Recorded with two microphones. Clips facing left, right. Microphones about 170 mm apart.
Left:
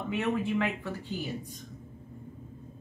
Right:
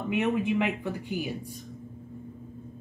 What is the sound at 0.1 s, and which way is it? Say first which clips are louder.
Speech: right 3 dB; 15° right (ahead or behind).